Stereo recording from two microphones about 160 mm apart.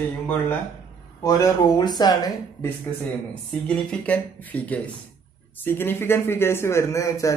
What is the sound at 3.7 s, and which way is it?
Speech, 10° left (ahead or behind).